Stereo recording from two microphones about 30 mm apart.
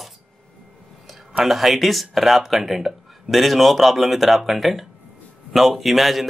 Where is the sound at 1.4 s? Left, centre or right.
Centre.